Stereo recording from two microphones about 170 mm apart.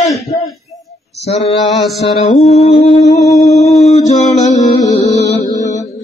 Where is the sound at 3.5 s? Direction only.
40° left (ahead or behind).